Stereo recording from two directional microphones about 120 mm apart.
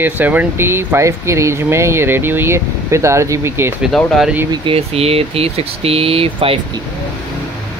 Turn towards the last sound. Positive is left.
turn(degrees=-50)  # may be behind; listen again after turning